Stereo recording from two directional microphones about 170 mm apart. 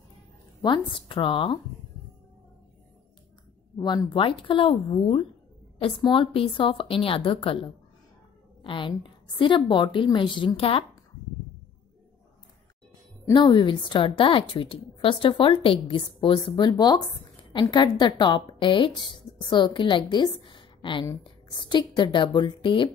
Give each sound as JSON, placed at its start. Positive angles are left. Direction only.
{"t": 0.6, "sound": "a woman's voice", "side_deg": 25}
{"t": 3.7, "sound": "a woman's voice", "side_deg": 25}
{"t": 13.3, "sound": "a woman's voice", "side_deg": 30}